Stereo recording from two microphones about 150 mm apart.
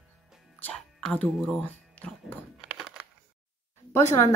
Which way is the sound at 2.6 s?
5° right (ahead or behind).